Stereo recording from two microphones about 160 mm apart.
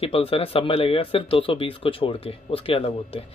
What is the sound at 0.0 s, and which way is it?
Speech, 35° left (ahead or behind).